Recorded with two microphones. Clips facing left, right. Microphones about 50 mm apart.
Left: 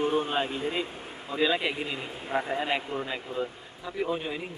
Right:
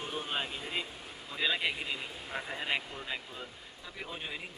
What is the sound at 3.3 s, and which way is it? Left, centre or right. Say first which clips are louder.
Speech: left 12 dB; centre.